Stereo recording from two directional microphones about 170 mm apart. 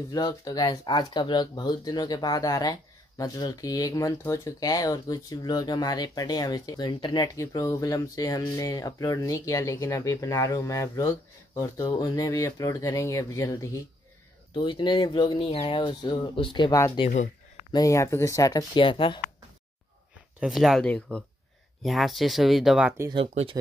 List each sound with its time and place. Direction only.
0.1 s speech: 20° left (ahead or behind)
14.5 s speech: 30° left (ahead or behind)
20.3 s speech: centre (ahead or behind)
23.1 s speech: 30° right (ahead or behind)